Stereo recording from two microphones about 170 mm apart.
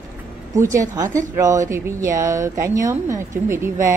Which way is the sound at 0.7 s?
20° right (ahead or behind).